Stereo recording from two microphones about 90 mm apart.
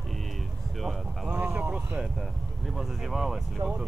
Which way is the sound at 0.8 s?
5° right (ahead or behind).